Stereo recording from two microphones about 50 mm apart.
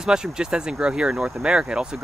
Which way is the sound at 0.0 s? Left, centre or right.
Centre.